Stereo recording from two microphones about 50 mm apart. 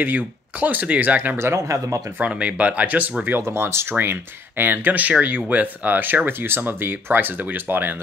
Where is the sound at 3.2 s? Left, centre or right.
Right.